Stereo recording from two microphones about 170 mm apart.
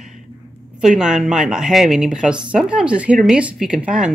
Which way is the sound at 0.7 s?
5° right (ahead or behind).